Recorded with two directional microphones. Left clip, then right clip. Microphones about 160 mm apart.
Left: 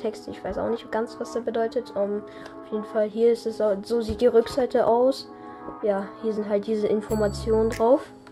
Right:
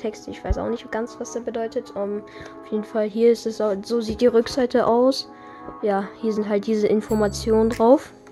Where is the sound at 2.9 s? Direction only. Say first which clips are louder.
Right 3 dB; 35° right (ahead or behind).